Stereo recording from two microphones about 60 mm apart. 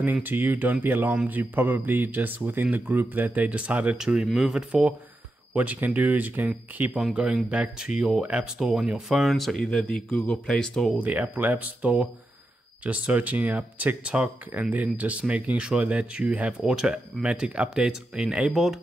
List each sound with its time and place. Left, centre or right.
0.0 s speech: right; by 4.3 s centre
4.3 s speech: centre
4.6 s speech: right
7.5 s speech: centre
9.3 s speech: centre
11.0 s speech: right
14.0 s speech: centre
14.5 s speech: right
18.5 s speech: centre